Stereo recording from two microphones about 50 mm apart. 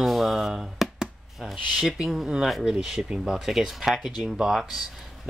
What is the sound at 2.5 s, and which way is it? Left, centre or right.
Speech, centre.